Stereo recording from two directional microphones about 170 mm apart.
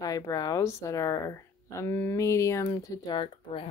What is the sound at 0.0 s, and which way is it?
Speech, 20° left (ahead or behind).